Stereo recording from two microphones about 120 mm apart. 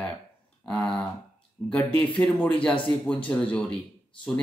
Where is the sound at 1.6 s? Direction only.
20° left (ahead or behind).